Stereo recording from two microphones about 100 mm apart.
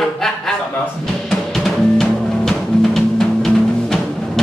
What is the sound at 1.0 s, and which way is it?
Music, 5° left (ahead or behind).